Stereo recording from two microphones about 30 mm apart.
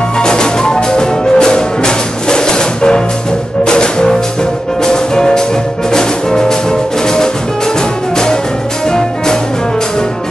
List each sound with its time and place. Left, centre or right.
0.2 s music: left